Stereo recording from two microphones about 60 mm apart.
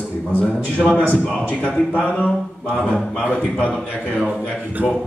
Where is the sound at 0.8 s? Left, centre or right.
Centre.